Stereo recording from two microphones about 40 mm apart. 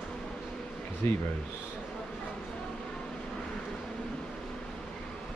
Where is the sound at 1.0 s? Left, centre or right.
Left.